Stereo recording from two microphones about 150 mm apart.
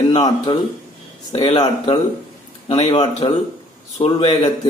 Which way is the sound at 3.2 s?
35° left (ahead or behind).